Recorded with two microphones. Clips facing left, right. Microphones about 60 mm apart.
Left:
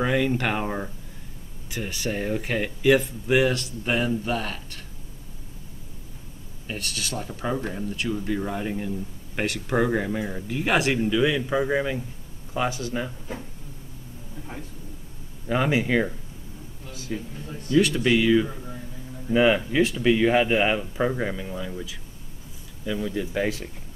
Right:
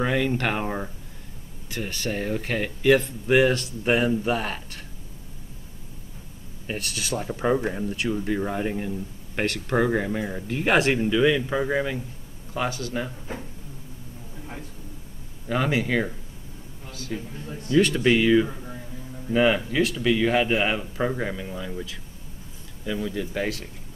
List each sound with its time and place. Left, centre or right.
0.0 s speech: centre
1.7 s speech: centre
3.8 s speech: centre
6.8 s speech: centre
9.4 s speech: centre
12.5 s speech: centre
15.4 s speech: centre
17.1 s speech: centre
19.8 s speech: centre
22.8 s speech: centre